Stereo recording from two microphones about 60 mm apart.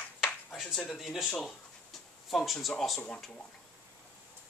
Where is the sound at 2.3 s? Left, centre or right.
Centre.